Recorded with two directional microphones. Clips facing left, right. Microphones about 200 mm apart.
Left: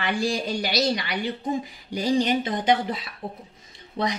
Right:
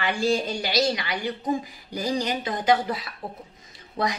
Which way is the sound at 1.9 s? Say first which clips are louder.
Left 4 dB; 25° left (ahead or behind).